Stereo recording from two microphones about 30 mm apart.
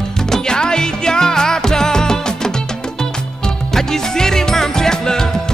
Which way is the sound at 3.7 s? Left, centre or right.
Centre.